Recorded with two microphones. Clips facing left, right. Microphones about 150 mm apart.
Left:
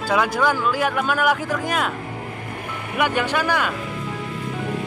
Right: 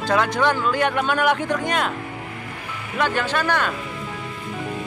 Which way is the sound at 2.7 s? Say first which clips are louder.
Left 3 dB; 50° left (ahead or behind).